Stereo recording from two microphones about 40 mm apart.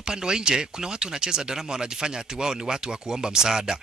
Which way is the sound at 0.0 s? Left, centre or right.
Centre.